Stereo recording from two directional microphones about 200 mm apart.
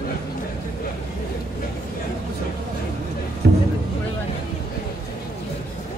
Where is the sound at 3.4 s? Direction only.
60° right (ahead or behind).